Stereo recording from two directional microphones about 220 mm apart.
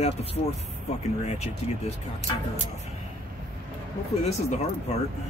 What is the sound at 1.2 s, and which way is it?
Speech, 30° left (ahead or behind).